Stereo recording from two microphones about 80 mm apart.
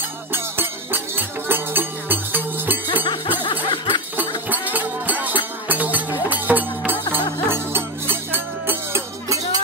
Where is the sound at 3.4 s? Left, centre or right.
Left.